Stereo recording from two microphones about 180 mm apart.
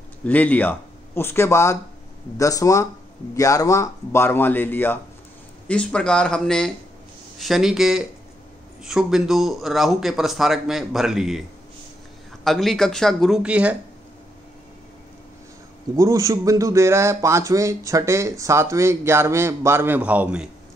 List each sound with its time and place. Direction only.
0.2 s speech: 10° left (ahead or behind)
12.4 s speech: centre (ahead or behind)
16.0 s speech: 20° right (ahead or behind)